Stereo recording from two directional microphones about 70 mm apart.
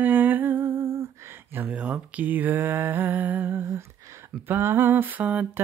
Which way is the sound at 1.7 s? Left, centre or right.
Centre.